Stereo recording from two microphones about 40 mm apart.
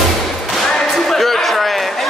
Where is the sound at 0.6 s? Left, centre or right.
Centre.